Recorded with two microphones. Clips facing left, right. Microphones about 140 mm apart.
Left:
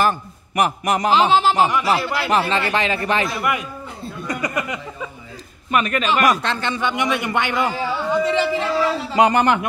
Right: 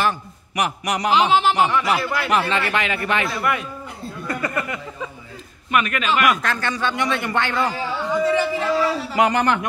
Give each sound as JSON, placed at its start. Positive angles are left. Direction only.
{"t": 0.0, "sound": "a man's voice", "side_deg": 40}
{"t": 2.0, "sound": "a man's voice", "side_deg": 20}
{"t": 3.3, "sound": "speech", "side_deg": 15}
{"t": 5.7, "sound": "a man's voice", "side_deg": 35}